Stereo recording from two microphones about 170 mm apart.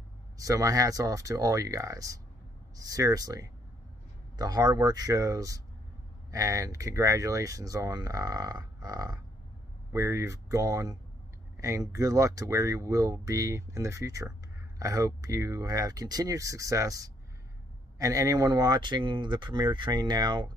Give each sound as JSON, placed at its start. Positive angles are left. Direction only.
{"t": 0.4, "sound": "speech", "side_deg": -20}